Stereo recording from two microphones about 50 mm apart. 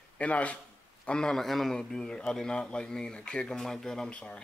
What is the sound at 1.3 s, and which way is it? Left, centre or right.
A man's voice, centre.